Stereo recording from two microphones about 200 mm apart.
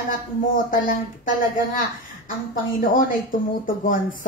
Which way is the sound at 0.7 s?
40° left (ahead or behind).